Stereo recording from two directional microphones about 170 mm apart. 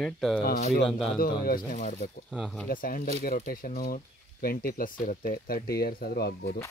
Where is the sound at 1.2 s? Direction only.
60° left (ahead or behind).